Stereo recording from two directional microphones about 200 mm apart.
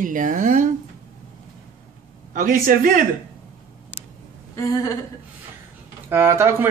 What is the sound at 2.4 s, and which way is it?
Speech, 45° right (ahead or behind).